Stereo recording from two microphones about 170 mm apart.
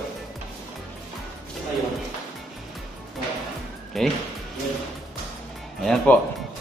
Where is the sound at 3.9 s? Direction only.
Centre (ahead or behind).